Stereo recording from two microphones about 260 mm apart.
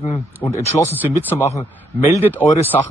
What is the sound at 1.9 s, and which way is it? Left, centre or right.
Speech, centre.